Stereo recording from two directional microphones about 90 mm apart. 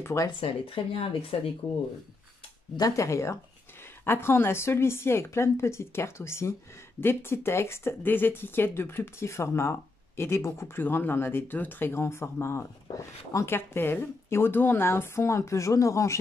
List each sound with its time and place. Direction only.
0.0 s speech: 35° left (ahead or behind)
0.4 s speech: 90° left
2.8 s speech: 35° left (ahead or behind)
13.6 s speech: 25° left (ahead or behind)